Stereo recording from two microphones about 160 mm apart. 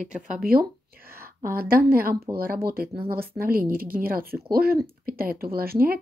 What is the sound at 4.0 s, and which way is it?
Speech, 65° right (ahead or behind).